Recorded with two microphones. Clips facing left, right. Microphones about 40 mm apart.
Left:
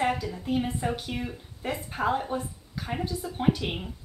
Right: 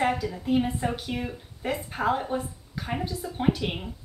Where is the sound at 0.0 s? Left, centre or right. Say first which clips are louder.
Right 2 dB; centre.